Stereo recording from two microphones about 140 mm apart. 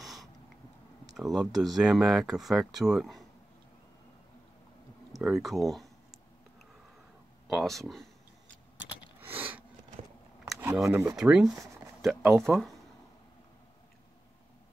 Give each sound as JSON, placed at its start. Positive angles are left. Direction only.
{"t": 0.0, "sound": "a sound", "side_deg": 0}
{"t": 1.1, "sound": "speech", "side_deg": 0}
{"t": 5.1, "sound": "speech", "side_deg": 0}
{"t": 7.4, "sound": "speech", "side_deg": 0}
{"t": 9.2, "sound": "a sound", "side_deg": -15}
{"t": 10.9, "sound": "speech", "side_deg": -20}
{"t": 11.1, "sound": "speech", "side_deg": -5}